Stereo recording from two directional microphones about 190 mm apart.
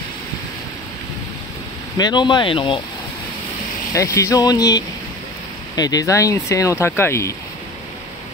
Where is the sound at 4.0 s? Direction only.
15° left (ahead or behind).